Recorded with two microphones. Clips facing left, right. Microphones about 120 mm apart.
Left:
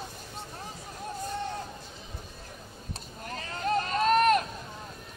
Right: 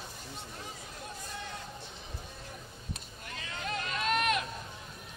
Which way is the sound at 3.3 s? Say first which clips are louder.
Left 8 dB; 40° left (ahead or behind).